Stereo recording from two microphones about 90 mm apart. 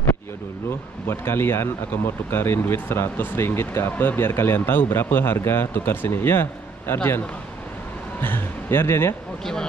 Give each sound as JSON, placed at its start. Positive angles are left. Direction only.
{"t": 1.0, "sound": "speech", "side_deg": 25}
{"t": 8.2, "sound": "speech", "side_deg": 25}